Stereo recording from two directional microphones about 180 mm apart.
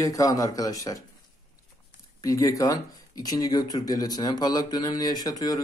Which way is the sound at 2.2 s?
20° left (ahead or behind).